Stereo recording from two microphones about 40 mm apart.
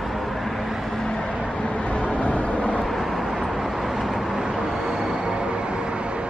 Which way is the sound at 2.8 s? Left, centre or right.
Centre.